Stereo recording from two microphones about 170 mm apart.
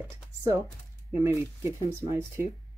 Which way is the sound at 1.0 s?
15° right (ahead or behind).